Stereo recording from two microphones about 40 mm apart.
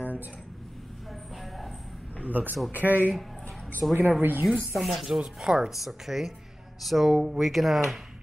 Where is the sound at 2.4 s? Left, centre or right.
Right.